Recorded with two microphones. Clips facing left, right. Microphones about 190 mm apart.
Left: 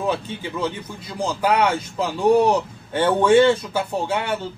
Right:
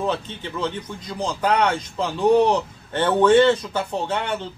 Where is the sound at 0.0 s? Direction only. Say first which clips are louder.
Left 1 dB; 10° left (ahead or behind).